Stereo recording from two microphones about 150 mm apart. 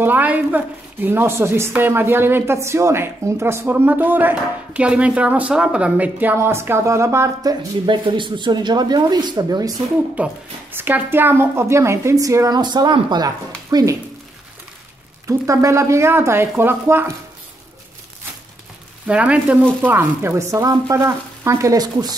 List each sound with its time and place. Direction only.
0.0 s a woman's voice: 10° right (ahead or behind)
7.8 s a woman's voice: 35° right (ahead or behind)
10.1 s a woman's voice: 10° right (ahead or behind)
15.2 s a woman's voice: 20° right (ahead or behind)
19.0 s a woman's voice: 10° right (ahead or behind); by 22.1 s 25° right (ahead or behind)